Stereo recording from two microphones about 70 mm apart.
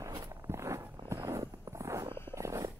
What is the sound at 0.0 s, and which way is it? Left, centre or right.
Walk, right.